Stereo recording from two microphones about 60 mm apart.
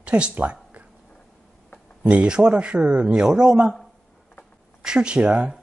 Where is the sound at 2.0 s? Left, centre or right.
Centre.